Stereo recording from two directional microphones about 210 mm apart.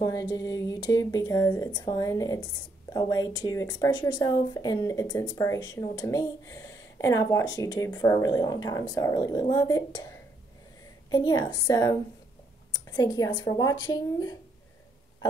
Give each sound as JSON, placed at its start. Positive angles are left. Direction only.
{"t": 0.0, "sound": "speech", "side_deg": 15}
{"t": 11.1, "sound": "speech", "side_deg": 20}
{"t": 12.9, "sound": "a woman's voice", "side_deg": 20}